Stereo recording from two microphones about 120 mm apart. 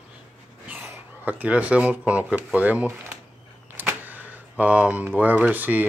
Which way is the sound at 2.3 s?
15° right (ahead or behind).